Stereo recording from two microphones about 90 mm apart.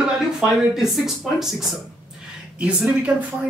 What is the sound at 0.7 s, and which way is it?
Speech, 5° right (ahead or behind).